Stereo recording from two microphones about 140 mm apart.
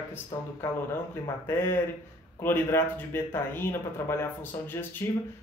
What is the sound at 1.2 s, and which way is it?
Speech, 15° left (ahead or behind).